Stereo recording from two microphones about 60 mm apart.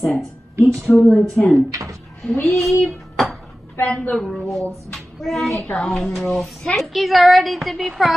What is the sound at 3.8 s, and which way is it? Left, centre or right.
Speech, centre.